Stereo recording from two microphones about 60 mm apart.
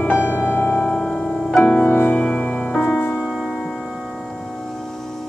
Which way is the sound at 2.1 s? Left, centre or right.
Left.